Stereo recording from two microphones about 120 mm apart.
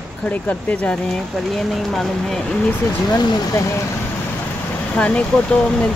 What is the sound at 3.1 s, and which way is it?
Speech, 35° left (ahead or behind).